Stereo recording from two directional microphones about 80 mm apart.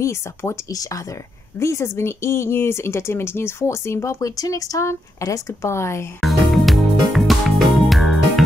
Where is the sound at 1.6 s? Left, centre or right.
Left.